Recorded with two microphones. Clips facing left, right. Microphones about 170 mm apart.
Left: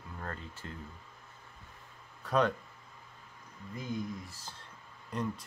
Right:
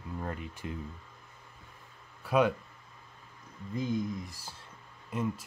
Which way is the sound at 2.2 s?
10° right (ahead or behind).